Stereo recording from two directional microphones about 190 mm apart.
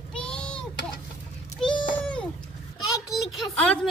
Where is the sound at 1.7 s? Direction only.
25° left (ahead or behind).